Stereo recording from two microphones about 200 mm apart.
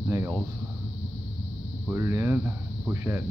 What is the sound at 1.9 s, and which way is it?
Speech, 15° right (ahead or behind).